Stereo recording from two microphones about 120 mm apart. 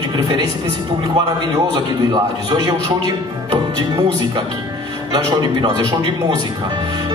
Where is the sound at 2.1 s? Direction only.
35° right (ahead or behind).